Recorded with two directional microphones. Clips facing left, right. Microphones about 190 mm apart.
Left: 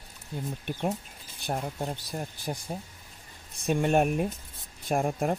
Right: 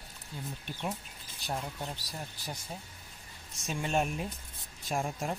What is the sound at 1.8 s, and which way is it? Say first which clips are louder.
Speech: left 7 dB; 50° left (ahead or behind).